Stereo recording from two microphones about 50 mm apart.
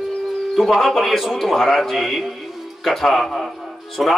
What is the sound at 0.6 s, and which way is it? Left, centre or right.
A man's voice, centre.